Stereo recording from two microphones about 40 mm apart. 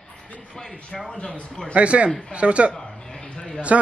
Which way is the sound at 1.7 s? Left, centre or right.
Right.